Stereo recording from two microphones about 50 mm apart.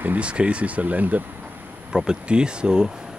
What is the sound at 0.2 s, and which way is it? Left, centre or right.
Speech, right.